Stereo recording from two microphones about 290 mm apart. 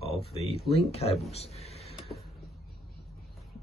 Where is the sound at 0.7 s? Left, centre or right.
Left.